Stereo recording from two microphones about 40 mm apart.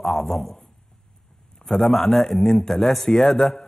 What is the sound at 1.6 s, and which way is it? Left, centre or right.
A man's voice, centre.